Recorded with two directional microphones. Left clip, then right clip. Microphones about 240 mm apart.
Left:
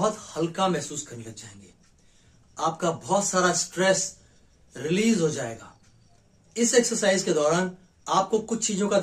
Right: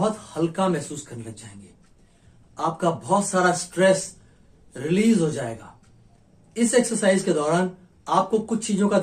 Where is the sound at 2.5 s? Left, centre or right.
Centre.